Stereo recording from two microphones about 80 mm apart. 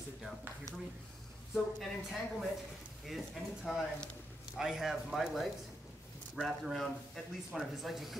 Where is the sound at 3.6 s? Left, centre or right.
Centre.